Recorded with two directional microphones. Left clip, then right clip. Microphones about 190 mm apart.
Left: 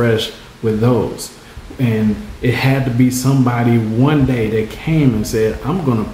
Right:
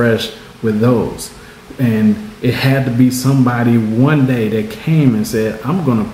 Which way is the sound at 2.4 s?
Centre (ahead or behind).